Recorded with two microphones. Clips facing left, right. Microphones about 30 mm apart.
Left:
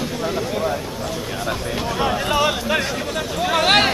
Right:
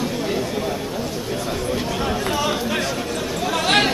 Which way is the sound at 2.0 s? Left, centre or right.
Centre.